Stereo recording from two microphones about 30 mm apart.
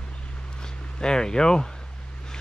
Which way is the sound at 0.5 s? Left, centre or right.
Left.